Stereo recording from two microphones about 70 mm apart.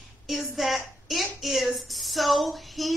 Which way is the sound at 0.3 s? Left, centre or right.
Centre.